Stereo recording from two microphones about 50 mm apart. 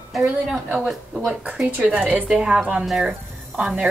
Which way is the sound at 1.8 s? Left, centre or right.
Right.